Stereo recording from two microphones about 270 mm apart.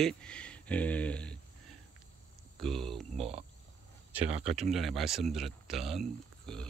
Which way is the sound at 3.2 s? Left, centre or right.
Right.